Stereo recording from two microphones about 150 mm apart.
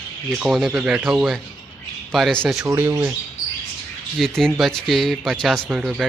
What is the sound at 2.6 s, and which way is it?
Speech, 20° right (ahead or behind).